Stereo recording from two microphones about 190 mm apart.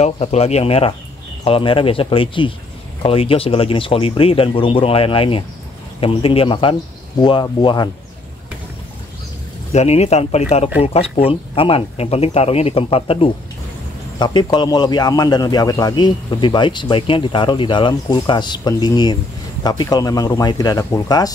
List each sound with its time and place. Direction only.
0.0 s a man's voice: 35° left (ahead or behind)
9.7 s a man's voice: 35° left (ahead or behind); by 21.3 s 20° left (ahead or behind)